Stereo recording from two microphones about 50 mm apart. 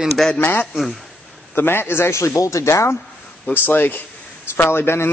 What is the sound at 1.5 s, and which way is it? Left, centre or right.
Speech, left.